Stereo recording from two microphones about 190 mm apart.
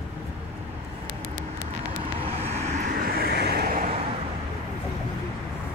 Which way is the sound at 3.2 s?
55° right (ahead or behind).